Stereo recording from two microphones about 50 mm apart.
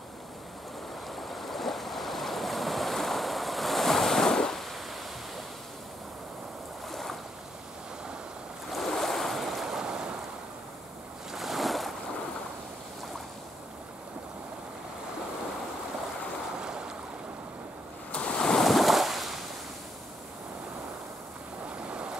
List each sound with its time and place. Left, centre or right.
1.0 s waves: centre
6.9 s boat: centre
8.7 s waves: centre
9.7 s waves: centre
11.3 s boat: centre
16.5 s stream: centre
18.1 s waves: left
18.6 s waves: centre
21.6 s waves: right